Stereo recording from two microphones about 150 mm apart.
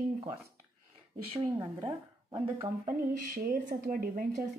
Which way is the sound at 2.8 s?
75° right (ahead or behind).